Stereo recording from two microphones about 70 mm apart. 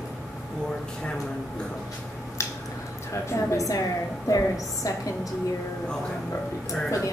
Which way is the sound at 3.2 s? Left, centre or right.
Left.